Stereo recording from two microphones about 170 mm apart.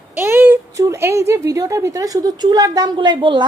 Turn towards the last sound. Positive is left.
turn(degrees=-30)  # may be behind; listen again after turning